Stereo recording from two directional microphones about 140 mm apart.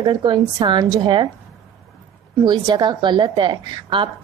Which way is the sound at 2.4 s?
30° right (ahead or behind).